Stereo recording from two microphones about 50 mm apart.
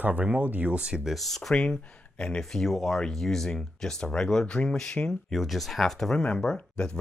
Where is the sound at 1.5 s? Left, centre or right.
Centre.